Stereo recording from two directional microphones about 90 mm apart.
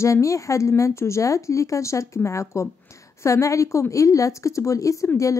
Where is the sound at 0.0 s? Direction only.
35° left (ahead or behind).